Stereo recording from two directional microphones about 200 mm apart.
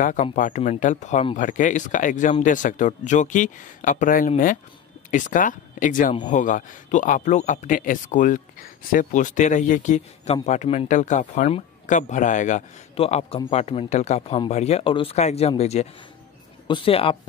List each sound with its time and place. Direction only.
0.0 s speech: 40° left (ahead or behind)